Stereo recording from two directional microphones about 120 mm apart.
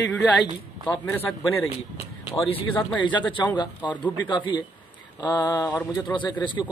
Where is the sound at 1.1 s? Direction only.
20° left (ahead or behind).